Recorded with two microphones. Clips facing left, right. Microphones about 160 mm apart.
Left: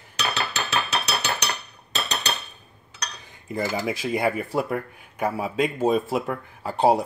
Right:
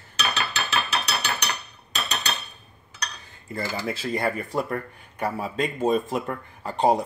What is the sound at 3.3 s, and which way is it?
Cutlery, 15° left (ahead or behind).